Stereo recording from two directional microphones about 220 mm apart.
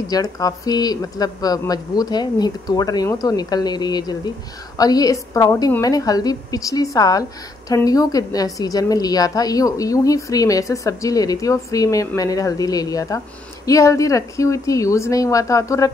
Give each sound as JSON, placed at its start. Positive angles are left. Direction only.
{"t": 0.1, "sound": "a woman's voice", "side_deg": 15}